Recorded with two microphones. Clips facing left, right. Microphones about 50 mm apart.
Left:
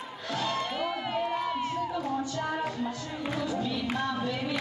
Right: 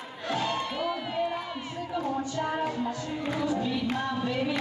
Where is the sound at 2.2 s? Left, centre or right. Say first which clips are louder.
Right 2 dB; right.